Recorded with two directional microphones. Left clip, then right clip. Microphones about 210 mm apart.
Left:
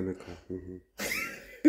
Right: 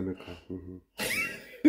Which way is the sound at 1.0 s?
50° right (ahead or behind).